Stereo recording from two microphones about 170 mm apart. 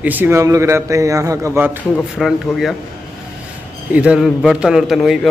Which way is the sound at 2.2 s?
Centre (ahead or behind).